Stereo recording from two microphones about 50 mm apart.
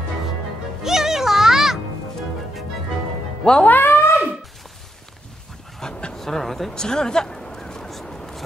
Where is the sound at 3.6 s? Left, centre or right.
Left.